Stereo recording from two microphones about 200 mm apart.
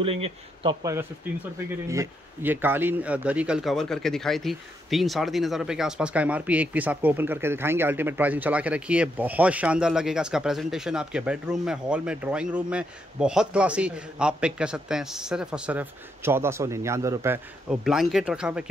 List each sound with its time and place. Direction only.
0.0 s speech: 30° right (ahead or behind)
0.8 s speech: 15° right (ahead or behind)